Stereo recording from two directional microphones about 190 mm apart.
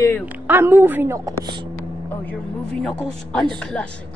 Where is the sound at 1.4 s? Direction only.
25° right (ahead or behind).